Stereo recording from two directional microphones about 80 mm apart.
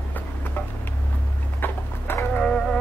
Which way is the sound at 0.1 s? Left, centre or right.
Left.